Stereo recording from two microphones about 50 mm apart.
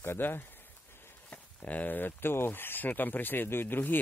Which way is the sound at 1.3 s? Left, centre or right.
Left.